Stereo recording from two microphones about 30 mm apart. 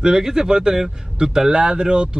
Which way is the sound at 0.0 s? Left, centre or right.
Right.